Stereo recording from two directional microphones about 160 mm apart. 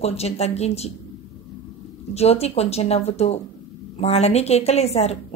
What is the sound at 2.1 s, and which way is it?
A woman's voice, 40° left (ahead or behind).